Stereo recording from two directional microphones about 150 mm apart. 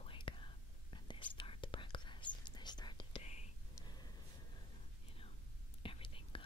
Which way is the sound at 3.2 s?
50° left (ahead or behind).